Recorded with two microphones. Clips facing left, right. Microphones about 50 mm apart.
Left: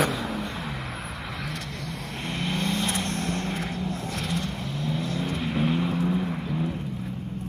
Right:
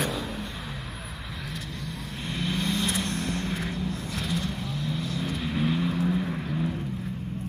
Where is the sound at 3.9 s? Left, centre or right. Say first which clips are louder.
Left 1 dB; left.